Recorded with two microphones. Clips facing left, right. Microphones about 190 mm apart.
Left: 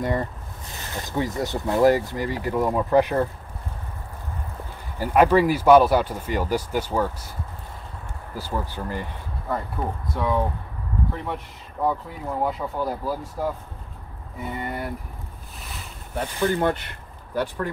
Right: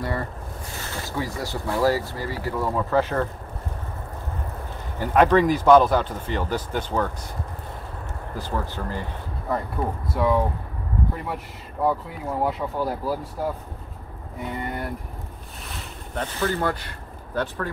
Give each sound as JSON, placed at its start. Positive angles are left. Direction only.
{"t": 0.0, "sound": "boat", "side_deg": 20}
{"t": 1.1, "sound": "speech", "side_deg": 20}
{"t": 4.9, "sound": "speech", "side_deg": 10}
{"t": 8.4, "sound": "speech", "side_deg": 10}
{"t": 10.1, "sound": "speech", "side_deg": -5}
{"t": 14.4, "sound": "speech", "side_deg": 0}
{"t": 16.2, "sound": "speech", "side_deg": 15}
{"t": 17.3, "sound": "speech", "side_deg": 10}